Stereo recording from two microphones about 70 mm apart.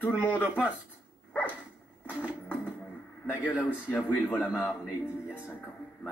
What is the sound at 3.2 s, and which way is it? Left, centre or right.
Speech, left.